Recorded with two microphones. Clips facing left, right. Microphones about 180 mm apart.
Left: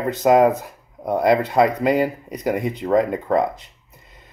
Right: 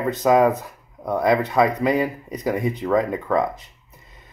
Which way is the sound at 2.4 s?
30° left (ahead or behind).